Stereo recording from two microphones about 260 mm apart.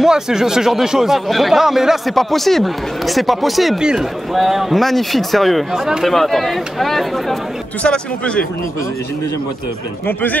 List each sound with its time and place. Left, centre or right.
0.0 s speech: centre